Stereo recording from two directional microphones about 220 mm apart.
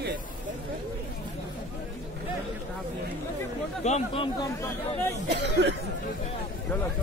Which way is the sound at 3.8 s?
30° left (ahead or behind).